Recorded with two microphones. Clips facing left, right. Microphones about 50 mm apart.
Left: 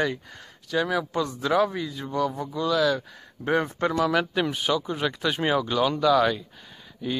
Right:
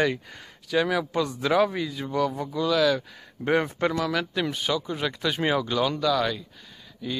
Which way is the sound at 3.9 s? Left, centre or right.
Centre.